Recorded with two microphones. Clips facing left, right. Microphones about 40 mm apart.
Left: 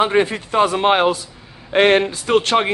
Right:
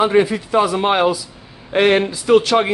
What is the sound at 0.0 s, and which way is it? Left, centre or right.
A man's voice, left.